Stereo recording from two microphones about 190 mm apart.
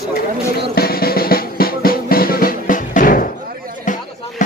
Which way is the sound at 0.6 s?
55° left (ahead or behind).